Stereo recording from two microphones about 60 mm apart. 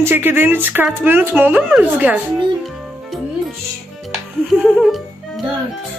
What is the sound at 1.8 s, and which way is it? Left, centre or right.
Speech, right.